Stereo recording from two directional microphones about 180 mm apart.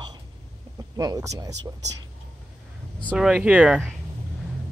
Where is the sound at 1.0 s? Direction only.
20° right (ahead or behind).